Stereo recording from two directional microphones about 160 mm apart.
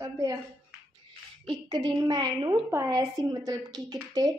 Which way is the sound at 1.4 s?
30° right (ahead or behind).